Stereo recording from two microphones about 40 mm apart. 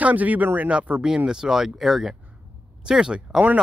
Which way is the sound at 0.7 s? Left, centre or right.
Right.